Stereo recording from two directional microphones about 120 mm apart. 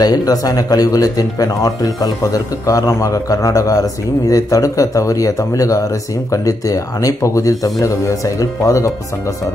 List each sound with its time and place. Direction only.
0.0 s speech: 30° left (ahead or behind)